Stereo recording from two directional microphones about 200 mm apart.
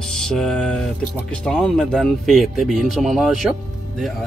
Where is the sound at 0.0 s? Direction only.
5° left (ahead or behind).